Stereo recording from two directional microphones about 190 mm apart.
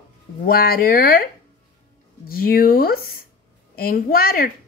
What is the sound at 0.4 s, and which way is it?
Speech, 50° left (ahead or behind).